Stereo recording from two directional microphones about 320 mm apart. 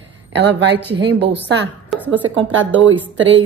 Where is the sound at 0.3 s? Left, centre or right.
Right.